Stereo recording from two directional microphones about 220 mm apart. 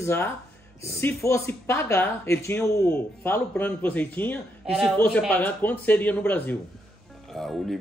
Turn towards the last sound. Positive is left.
turn(degrees=0)  # may be behind; listen again after turning